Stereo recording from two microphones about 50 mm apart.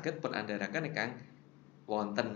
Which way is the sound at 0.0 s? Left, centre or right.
Centre.